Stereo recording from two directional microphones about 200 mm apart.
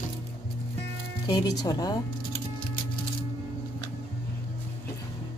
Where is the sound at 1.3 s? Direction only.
20° left (ahead or behind).